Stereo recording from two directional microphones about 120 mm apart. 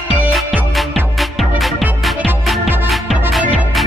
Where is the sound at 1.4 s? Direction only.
Centre (ahead or behind).